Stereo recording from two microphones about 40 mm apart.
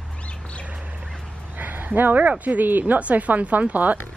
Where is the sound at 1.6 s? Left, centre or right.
Right.